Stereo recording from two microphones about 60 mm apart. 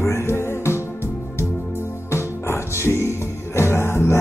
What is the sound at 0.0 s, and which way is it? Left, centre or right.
Music, left.